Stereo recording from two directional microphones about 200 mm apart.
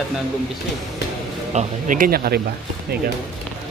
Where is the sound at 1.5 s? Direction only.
40° right (ahead or behind).